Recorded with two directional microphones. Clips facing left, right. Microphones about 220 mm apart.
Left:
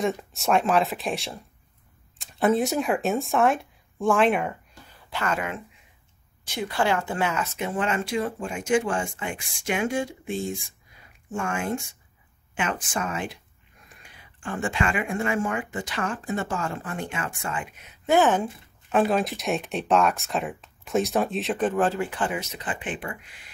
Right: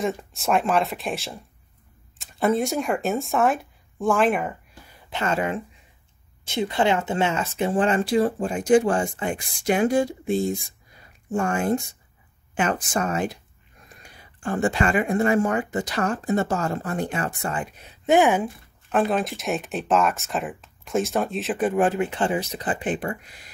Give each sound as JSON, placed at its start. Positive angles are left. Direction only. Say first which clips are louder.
{"t": 0.0, "sound": "speech", "louder": "even", "side_deg": 0}
{"t": 5.1, "sound": "speech", "louder": "right 4 dB", "side_deg": -25}
{"t": 18.0, "sound": "speech", "louder": "right 2 dB", "side_deg": -15}
{"t": 18.4, "sound": "speech", "louder": "right 1 dB", "side_deg": 0}